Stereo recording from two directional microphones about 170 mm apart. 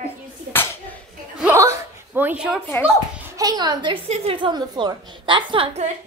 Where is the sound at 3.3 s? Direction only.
25° right (ahead or behind).